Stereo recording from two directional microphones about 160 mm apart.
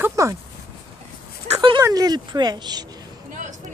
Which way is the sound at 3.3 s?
50° right (ahead or behind).